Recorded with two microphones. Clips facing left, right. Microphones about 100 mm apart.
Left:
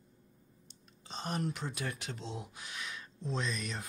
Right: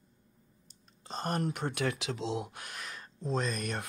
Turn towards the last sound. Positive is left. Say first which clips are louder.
# right 4 dB
turn(degrees=-50)  # may be behind; listen again after turning